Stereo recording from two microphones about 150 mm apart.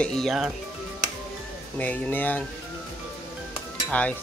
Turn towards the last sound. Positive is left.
turn(degrees=10)  # may be behind; listen again after turning